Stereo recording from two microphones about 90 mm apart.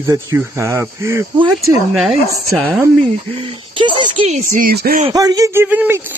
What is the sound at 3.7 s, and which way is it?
Speech, 65° right (ahead or behind).